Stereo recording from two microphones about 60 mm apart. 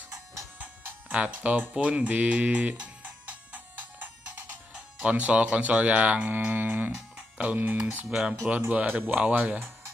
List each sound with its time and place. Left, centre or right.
0.6 s music: right
5.0 s speech: right
7.2 s music: centre
7.8 s speech: right
8.5 s speech: centre
8.8 s speech: right